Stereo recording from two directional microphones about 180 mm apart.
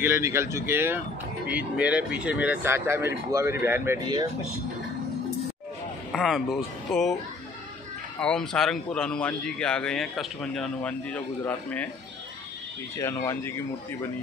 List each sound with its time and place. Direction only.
0.0 s speech: 15° right (ahead or behind)
4.0 s speech: 25° right (ahead or behind)
6.1 s a man's voice: centre (ahead or behind)
8.2 s a man's voice: 5° left (ahead or behind)
12.9 s speech: 15° left (ahead or behind)